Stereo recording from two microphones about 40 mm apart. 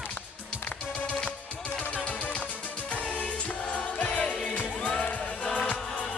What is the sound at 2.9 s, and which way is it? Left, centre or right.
Music, left.